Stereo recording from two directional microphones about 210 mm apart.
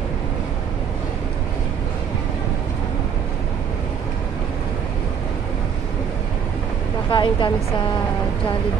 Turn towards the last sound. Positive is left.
turn(degrees=25)  # may be behind; listen again after turning